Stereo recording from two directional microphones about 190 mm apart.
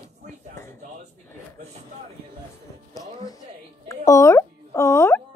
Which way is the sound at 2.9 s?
20° left (ahead or behind).